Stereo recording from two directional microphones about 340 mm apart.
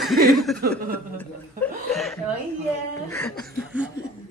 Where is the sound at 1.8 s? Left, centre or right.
Centre.